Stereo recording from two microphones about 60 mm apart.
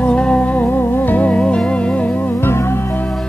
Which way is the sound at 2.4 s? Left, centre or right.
Left.